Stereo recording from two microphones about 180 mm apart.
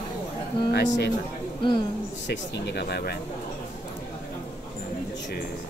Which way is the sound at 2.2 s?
75° left (ahead or behind).